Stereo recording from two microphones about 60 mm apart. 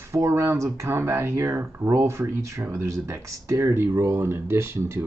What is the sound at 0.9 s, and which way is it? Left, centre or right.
Speech, right.